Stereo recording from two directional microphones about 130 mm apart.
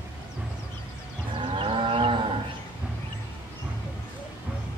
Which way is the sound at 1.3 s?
40° right (ahead or behind).